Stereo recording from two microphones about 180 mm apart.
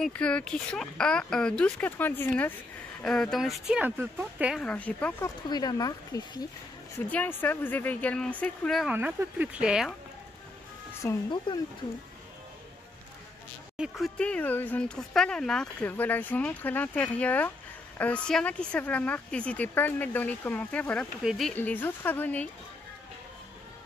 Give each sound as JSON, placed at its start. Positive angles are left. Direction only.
{"t": 0.0, "sound": "speech", "side_deg": 5}
{"t": 4.6, "sound": "speech", "side_deg": 10}
{"t": 5.5, "sound": "speech", "side_deg": 20}
{"t": 7.1, "sound": "speech", "side_deg": 10}
{"t": 8.9, "sound": "speech", "side_deg": -10}
{"t": 11.0, "sound": "speech", "side_deg": 15}
{"t": 13.7, "sound": "speech", "side_deg": 0}